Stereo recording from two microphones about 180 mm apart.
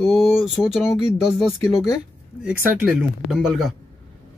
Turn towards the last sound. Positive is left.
turn(degrees=0)  # may be behind; listen again after turning